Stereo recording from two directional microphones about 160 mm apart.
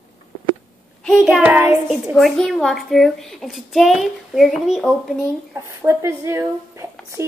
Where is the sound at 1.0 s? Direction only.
Centre (ahead or behind).